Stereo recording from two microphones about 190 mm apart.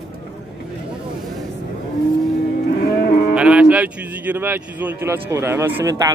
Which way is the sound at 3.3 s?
5° right (ahead or behind).